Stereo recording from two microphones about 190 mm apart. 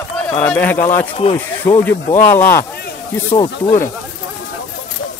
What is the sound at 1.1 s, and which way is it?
Speech, 30° left (ahead or behind).